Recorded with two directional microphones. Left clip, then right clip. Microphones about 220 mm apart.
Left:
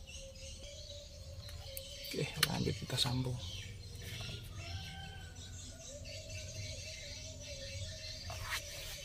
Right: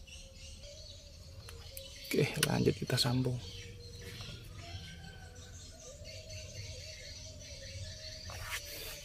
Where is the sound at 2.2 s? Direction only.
35° right (ahead or behind).